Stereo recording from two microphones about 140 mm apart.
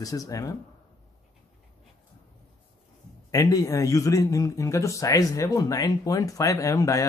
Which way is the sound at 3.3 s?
25° left (ahead or behind).